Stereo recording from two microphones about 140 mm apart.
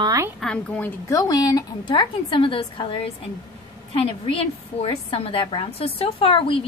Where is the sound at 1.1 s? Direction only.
25° left (ahead or behind).